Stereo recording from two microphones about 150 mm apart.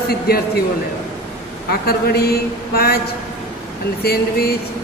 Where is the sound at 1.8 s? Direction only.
90° left.